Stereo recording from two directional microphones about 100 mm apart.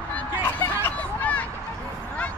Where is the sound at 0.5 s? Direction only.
15° left (ahead or behind).